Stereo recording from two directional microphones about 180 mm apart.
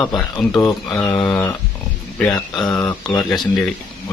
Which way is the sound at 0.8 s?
5° left (ahead or behind).